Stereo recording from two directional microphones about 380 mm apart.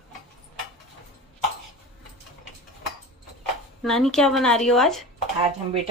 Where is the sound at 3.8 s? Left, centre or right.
Centre.